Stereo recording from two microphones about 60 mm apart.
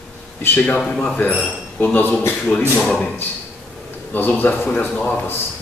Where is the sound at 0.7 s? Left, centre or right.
Centre.